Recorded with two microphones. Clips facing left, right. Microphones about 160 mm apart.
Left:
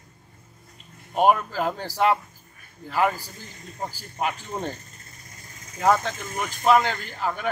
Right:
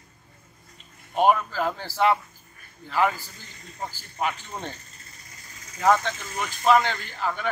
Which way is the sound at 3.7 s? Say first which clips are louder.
Left 1 dB; 15° left (ahead or behind).